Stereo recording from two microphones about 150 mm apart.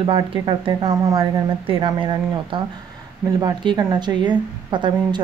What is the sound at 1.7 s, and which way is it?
A woman's voice, 35° right (ahead or behind).